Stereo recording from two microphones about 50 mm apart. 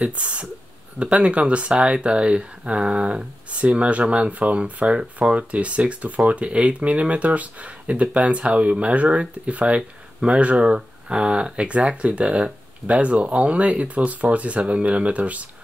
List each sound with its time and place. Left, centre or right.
0.0 s speech: right
4.9 s speech: centre
5.5 s speech: right